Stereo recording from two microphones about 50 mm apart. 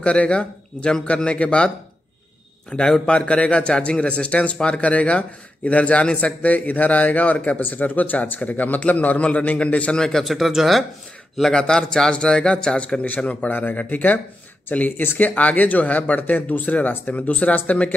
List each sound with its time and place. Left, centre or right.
0.0 s a man's voice: left
2.7 s a man's voice: centre
9.9 s a man's voice: centre
10.2 s speech: centre
11.5 s a man's voice: centre
13.5 s a man's voice: left